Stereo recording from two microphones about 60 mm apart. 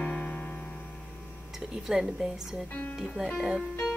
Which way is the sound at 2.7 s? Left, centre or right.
Left.